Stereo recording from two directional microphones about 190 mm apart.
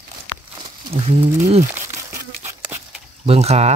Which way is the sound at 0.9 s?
30° right (ahead or behind).